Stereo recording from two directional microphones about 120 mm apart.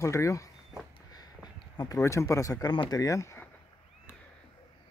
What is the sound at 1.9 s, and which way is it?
Speech, 20° left (ahead or behind).